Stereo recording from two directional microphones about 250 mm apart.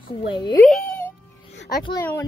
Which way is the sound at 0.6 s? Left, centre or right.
Centre.